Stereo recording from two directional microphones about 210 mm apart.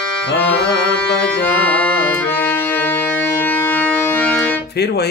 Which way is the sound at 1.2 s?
5° left (ahead or behind).